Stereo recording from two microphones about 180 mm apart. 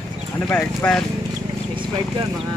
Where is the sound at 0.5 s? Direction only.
10° left (ahead or behind).